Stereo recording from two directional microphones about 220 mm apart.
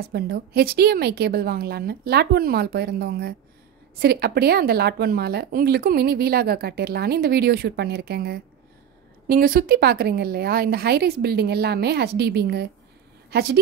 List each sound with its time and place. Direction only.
0.1 s speech: 45° right (ahead or behind)